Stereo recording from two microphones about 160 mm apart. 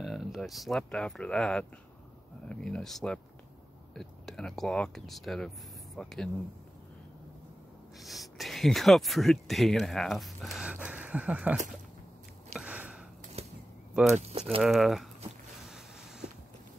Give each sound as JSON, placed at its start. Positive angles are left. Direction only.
{"t": 0.0, "sound": "speech", "side_deg": 0}
{"t": 8.0, "sound": "speech", "side_deg": 0}
{"t": 12.5, "sound": "a sound", "side_deg": -5}
{"t": 13.4, "sound": "a sound", "side_deg": -40}
{"t": 14.6, "sound": "speech", "side_deg": 0}
{"t": 15.6, "sound": "vehicle", "side_deg": -5}